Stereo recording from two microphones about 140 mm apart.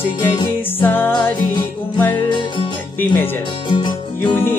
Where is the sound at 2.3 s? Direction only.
35° left (ahead or behind).